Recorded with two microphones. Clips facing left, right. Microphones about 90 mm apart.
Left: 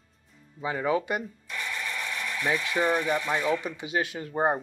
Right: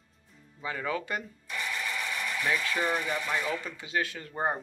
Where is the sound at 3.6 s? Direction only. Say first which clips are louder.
Left 3 dB; 15° left (ahead or behind).